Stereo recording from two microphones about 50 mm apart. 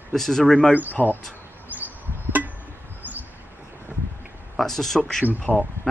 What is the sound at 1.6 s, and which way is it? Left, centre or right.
Chop, right.